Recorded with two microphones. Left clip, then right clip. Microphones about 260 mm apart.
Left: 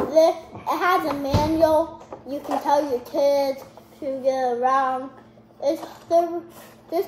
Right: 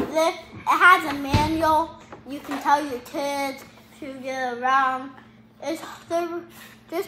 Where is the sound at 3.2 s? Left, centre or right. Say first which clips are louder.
Left 7 dB; right.